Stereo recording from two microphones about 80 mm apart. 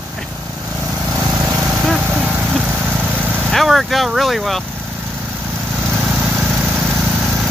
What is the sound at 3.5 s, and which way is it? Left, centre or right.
Speech, centre.